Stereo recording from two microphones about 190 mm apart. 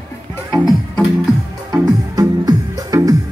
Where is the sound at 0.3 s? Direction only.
15° left (ahead or behind).